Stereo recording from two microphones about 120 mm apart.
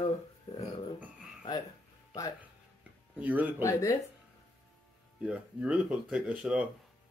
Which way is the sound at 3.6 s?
25° left (ahead or behind).